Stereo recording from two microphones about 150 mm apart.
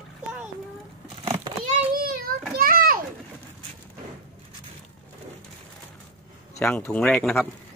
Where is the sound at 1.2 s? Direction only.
40° right (ahead or behind).